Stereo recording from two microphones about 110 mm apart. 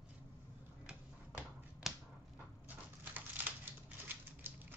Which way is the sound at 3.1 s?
15° right (ahead or behind).